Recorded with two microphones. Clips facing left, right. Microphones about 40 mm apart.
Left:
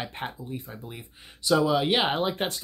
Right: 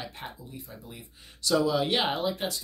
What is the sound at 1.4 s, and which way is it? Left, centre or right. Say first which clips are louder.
Speech: left 3 dB; centre.